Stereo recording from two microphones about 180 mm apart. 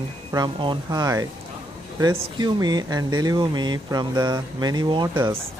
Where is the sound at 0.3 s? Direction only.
25° right (ahead or behind).